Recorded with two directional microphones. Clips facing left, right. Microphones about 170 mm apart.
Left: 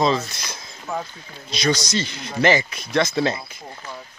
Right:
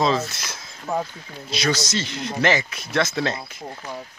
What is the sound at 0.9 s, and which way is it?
Speech, 35° right (ahead or behind).